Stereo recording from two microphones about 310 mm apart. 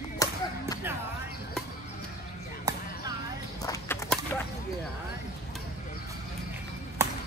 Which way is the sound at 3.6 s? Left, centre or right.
Centre.